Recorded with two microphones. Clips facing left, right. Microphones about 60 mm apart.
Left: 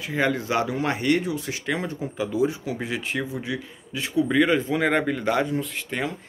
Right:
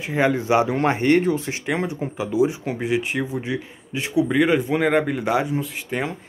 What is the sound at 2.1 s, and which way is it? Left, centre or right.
Speech, centre.